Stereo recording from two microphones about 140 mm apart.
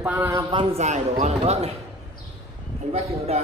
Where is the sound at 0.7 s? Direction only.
55° right (ahead or behind).